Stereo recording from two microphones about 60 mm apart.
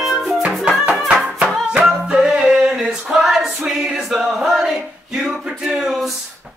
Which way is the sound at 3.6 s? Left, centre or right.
Centre.